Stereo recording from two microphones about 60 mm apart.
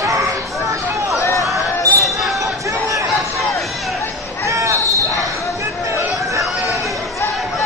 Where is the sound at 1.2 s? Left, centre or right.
Left.